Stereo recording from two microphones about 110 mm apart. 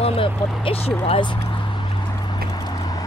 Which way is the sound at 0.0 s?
60° left (ahead or behind).